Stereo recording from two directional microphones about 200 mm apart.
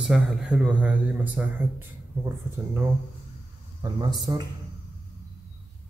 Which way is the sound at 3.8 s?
20° right (ahead or behind).